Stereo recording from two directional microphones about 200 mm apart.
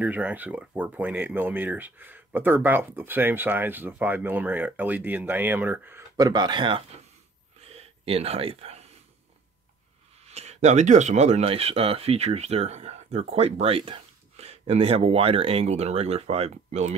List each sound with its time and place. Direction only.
0.0 s speech: 10° right (ahead or behind)
7.6 s a sound: 30° right (ahead or behind)
10.2 s speech: 30° right (ahead or behind)